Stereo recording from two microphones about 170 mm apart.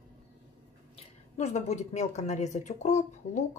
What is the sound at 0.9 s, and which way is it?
Speech, 40° left (ahead or behind).